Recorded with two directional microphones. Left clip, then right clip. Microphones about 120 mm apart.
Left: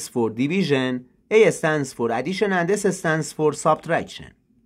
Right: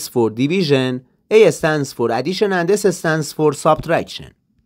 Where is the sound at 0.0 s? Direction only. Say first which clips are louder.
Right 6 dB; 40° right (ahead or behind).